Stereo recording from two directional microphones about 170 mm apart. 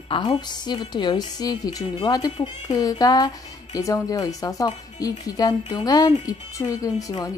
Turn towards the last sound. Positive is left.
turn(degrees=20)  # may be behind; listen again after turning